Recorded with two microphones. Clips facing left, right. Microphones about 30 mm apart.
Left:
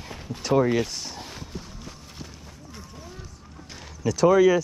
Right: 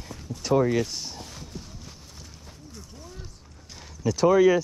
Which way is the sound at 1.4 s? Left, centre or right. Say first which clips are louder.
Left 3 dB; centre.